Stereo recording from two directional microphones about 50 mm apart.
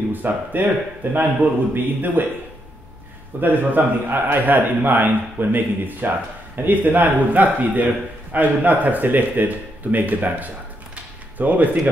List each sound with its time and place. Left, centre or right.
0.1 s a man's voice: right
3.3 s a man's voice: right